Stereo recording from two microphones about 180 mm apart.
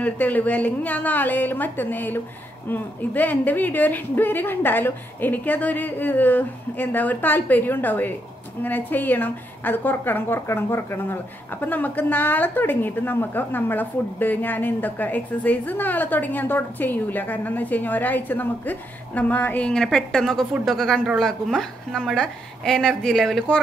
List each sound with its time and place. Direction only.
0.0 s a woman's voice: 10° left (ahead or behind)